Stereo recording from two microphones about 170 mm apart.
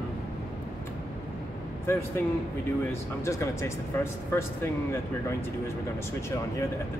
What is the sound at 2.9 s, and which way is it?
Speech, 15° left (ahead or behind).